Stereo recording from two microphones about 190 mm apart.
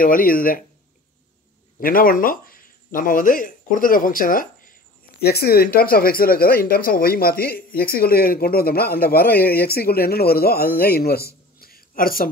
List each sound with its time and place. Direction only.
0.0 s speech: 50° left (ahead or behind)
1.8 s speech: 50° left (ahead or behind)